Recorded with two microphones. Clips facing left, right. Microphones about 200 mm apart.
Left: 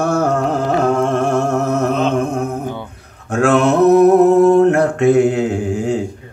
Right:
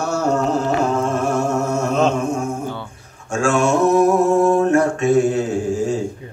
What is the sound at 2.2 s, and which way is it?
Music, 60° left (ahead or behind).